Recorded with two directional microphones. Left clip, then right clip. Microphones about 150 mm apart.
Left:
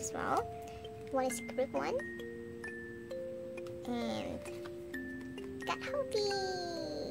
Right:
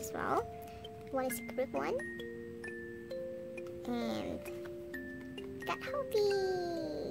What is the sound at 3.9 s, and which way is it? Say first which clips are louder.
Music: even; 20° right (ahead or behind).